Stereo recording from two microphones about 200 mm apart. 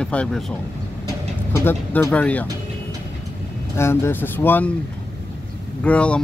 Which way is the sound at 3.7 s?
15° left (ahead or behind).